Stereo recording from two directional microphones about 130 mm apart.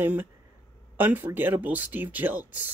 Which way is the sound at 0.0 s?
15° right (ahead or behind).